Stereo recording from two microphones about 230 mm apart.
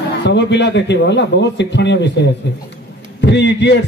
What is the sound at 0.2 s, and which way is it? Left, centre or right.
A man's voice, left.